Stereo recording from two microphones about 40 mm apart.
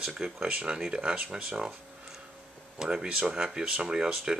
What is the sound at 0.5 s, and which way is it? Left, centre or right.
Speech, right.